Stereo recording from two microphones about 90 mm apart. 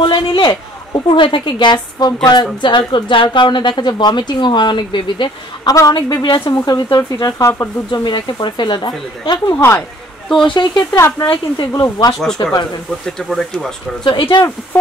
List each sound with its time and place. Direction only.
0.0 s a man's voice: 65° left (ahead or behind); by 7.4 s 45° left (ahead or behind)
7.4 s speech: 30° left (ahead or behind)
7.9 s a woman's voice: 55° left (ahead or behind)
9.6 s speech: 25° left (ahead or behind)
10.2 s speech: 5° left (ahead or behind)
10.5 s a woman's voice: 60° left (ahead or behind)
10.9 s speech: 30° left (ahead or behind)
11.2 s a woman's voice: 55° left (ahead or behind)
13.0 s speech: 5° left (ahead or behind)
14.0 s a woman's voice: 65° left (ahead or behind)